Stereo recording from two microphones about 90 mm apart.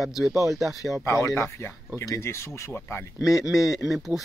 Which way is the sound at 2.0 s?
30° left (ahead or behind).